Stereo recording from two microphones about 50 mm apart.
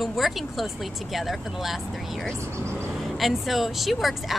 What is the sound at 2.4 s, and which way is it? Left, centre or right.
Speech, right.